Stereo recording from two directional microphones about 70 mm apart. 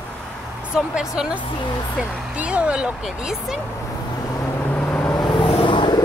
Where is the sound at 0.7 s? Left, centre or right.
Centre.